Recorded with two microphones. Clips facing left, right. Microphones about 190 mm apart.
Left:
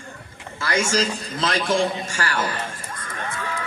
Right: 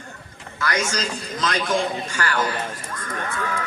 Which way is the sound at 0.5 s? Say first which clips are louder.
Left 3 dB; 25° left (ahead or behind).